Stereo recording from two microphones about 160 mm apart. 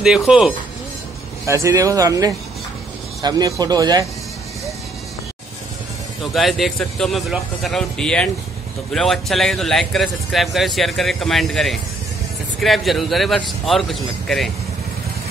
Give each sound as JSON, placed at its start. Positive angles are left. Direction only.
{"t": 0.0, "sound": "speech", "side_deg": -5}
{"t": 1.4, "sound": "speech", "side_deg": -20}
{"t": 6.3, "sound": "speech", "side_deg": 0}